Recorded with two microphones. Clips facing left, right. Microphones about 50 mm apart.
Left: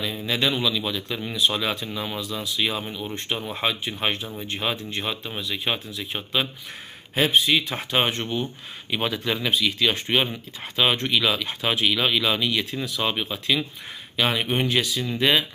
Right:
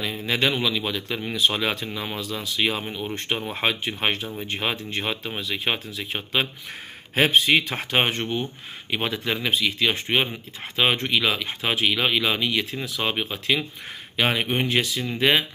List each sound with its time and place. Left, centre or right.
0.0 s speech: right
6.1 s speech: right
7.2 s speech: right
7.7 s speech: right
10.0 s speech: centre; by 15.4 s right